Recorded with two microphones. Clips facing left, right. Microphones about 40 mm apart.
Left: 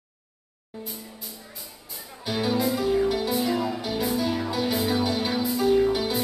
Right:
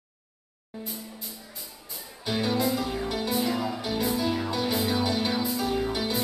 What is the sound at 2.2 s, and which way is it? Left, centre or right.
Music, centre.